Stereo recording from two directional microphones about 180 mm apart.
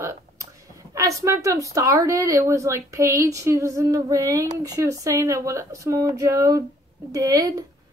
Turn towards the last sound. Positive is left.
turn(degrees=-20)  # may be behind; listen again after turning